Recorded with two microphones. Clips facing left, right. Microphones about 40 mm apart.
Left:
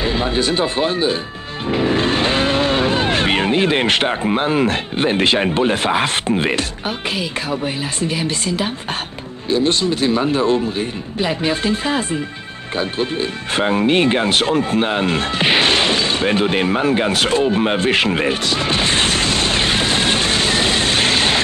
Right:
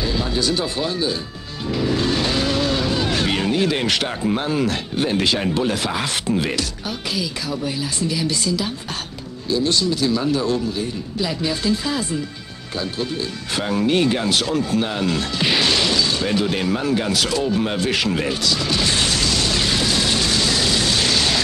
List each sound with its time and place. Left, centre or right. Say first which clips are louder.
0.0 s speech: left 4 dB; left